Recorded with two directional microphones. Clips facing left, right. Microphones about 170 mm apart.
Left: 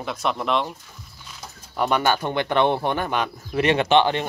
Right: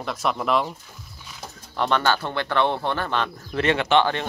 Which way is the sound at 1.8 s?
10° left (ahead or behind).